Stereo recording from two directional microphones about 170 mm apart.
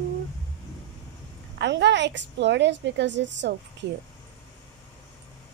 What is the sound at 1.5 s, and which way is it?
A woman's voice, 90° right.